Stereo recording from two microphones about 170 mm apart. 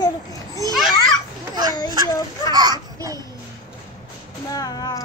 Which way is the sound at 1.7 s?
20° left (ahead or behind).